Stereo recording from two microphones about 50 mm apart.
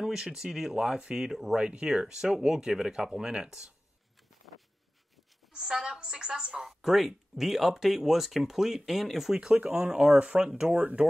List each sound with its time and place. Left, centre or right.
0.0 s speech: centre
1.6 s speech: right
5.5 s speech: centre
9.5 s speech: right
10.6 s speech: centre